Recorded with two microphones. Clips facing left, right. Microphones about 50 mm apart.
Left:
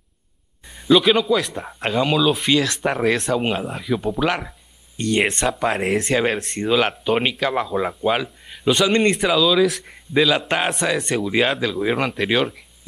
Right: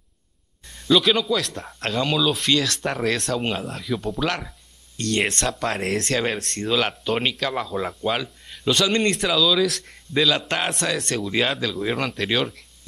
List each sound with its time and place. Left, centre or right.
0.7 s speech: centre